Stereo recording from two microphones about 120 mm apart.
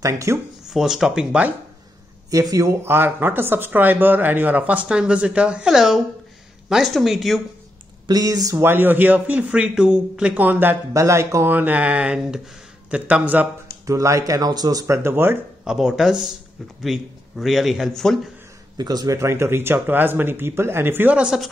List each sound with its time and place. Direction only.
0.0 s speech: 25° right (ahead or behind)
0.7 s speech: 5° right (ahead or behind)
2.3 s a man's voice: 25° right (ahead or behind); by 7.4 s centre (ahead or behind)
8.1 s speech: 30° right (ahead or behind)
8.5 s a man's voice: 15° right (ahead or behind)
13.8 s speech: 25° right (ahead or behind)
15.6 s speech: 5° right (ahead or behind)
18.8 s speech: 35° right (ahead or behind); by 21.5 s 5° right (ahead or behind)